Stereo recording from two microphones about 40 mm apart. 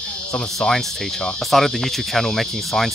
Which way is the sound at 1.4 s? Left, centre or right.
Centre.